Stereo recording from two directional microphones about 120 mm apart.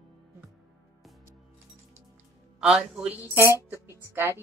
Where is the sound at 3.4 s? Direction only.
20° right (ahead or behind).